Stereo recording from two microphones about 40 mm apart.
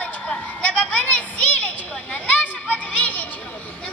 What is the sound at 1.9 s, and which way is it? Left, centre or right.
Children playing, left.